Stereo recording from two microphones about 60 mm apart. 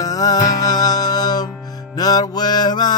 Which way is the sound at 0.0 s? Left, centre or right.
Left.